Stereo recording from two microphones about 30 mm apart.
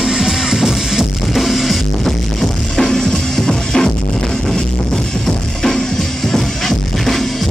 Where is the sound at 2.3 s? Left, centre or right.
Centre.